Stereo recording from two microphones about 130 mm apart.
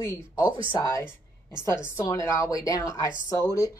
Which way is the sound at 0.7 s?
25° left (ahead or behind).